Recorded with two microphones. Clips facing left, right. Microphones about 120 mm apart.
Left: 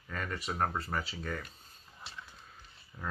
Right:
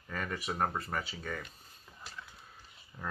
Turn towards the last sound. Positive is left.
turn(degrees=0)  # may be behind; listen again after turning